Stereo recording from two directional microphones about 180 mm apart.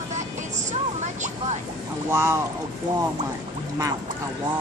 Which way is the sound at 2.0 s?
15° right (ahead or behind).